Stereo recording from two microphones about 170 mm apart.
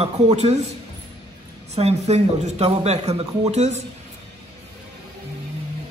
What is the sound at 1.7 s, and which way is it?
A woman's voice, 40° right (ahead or behind).